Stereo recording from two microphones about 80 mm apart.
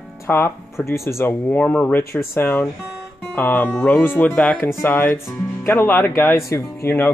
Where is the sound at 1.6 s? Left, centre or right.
Centre.